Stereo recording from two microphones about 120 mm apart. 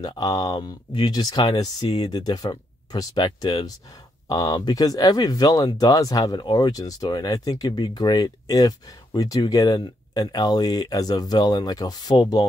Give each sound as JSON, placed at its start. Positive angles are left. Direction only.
{"t": 0.0, "sound": "speech", "side_deg": 35}